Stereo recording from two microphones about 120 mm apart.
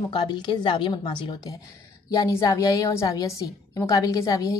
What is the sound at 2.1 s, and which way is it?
A woman's voice, 30° left (ahead or behind).